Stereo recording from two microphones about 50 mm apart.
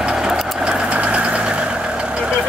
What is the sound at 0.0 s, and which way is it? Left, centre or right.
Vehicle, centre.